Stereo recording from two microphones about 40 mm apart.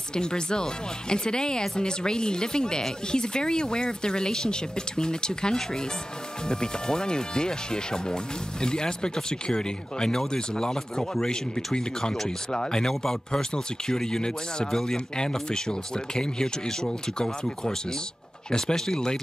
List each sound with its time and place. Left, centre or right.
0.1 s speech: centre